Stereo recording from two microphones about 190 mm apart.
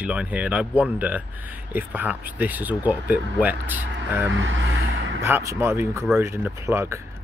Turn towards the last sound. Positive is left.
turn(degrees=-15)  # may be behind; listen again after turning